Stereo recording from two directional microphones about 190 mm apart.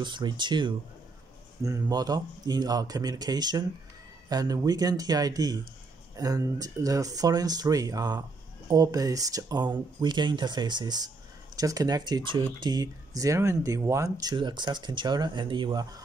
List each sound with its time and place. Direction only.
0.0 s speech: 25° right (ahead or behind)